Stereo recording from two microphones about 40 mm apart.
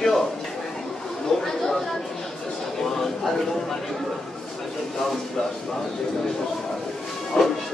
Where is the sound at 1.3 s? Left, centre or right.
Centre.